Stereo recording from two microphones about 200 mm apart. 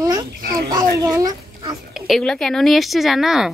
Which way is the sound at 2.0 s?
Centre (ahead or behind).